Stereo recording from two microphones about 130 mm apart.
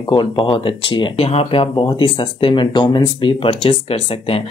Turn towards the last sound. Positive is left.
turn(degrees=45)  # may be behind; listen again after turning